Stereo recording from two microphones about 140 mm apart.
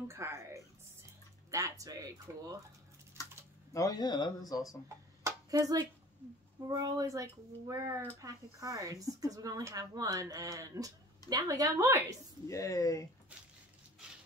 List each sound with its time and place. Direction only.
0.1 s speech: 20° right (ahead or behind)
3.7 s speech: 25° left (ahead or behind)
4.8 s a sound: 20° right (ahead or behind)
6.7 s speech: 25° right (ahead or behind)
12.4 s speech: 25° left (ahead or behind)